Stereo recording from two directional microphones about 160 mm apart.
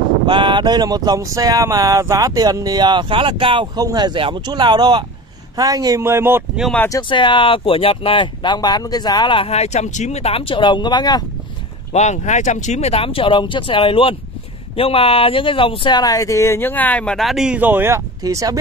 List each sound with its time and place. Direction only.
0.3 s speech: 30° right (ahead or behind); by 6.6 s 15° right (ahead or behind)
6.6 s speech: 5° left (ahead or behind)
6.9 s speech: 30° left (ahead or behind)
11.9 s speech: 45° left (ahead or behind); by 18.6 s 20° right (ahead or behind)